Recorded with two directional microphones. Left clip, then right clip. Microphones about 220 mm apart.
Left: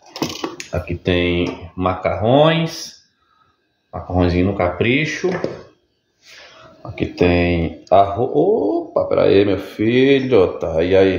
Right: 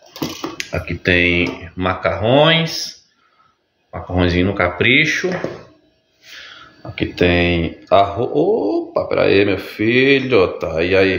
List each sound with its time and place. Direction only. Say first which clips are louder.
0.1 s a sound: left 2 dB; 30° left (ahead or behind)
0.6 s speech: right 1 dB; 5° left (ahead or behind)
3.9 s speech: right 1 dB; 5° left (ahead or behind)
7.0 s speech: right 1 dB; 10° left (ahead or behind)